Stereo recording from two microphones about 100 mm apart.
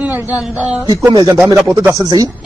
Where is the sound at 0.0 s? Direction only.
20° right (ahead or behind).